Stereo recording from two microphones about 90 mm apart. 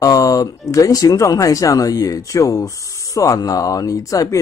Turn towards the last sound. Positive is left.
turn(degrees=40)  # may be behind; listen again after turning